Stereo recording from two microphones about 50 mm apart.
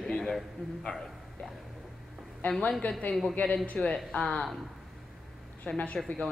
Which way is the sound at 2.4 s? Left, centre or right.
Left.